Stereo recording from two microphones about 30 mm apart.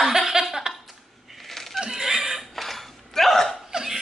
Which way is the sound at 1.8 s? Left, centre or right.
Centre.